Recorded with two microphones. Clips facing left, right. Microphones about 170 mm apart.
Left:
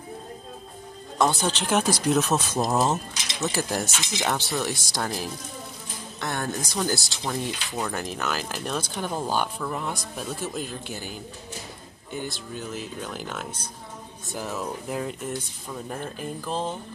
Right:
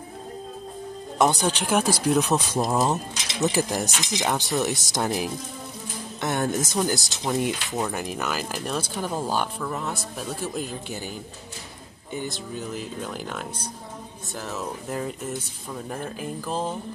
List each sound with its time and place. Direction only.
1.1 s speech: 20° right (ahead or behind)
2.6 s speech: 5° left (ahead or behind)
2.9 s speech: 15° right (ahead or behind); by 10.7 s centre (ahead or behind)
12.5 s speech: centre (ahead or behind)